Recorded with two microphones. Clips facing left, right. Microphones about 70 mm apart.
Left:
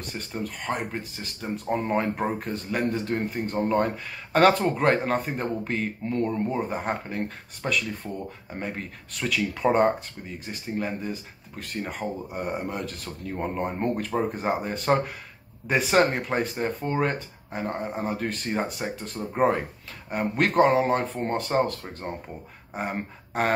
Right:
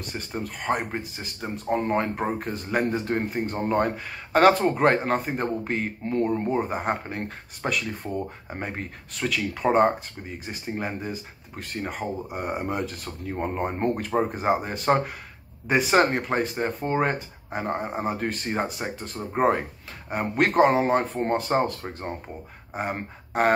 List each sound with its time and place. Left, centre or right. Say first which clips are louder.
0.7 s speech: right 2 dB; right
1.4 s speech: right 1 dB; centre
2.7 s speech: right 2 dB; centre
3.3 s speech: left 1 dB; centre; by 8.8 s right
9.3 s speech: even; centre
11.0 s speech: even; centre